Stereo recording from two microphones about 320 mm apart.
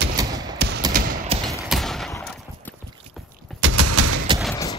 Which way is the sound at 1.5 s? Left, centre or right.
Centre.